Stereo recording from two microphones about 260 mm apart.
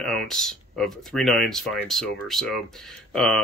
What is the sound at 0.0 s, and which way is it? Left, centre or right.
Speech, centre.